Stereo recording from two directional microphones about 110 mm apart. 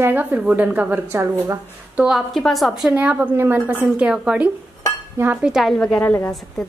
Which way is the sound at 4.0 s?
10° right (ahead or behind).